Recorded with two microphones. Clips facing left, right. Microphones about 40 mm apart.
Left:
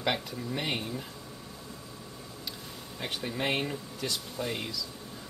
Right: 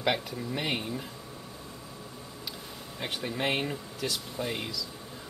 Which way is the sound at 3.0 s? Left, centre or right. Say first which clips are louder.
Right 1 dB; centre.